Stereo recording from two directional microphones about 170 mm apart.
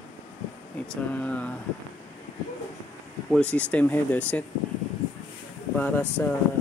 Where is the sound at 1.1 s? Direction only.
10° left (ahead or behind).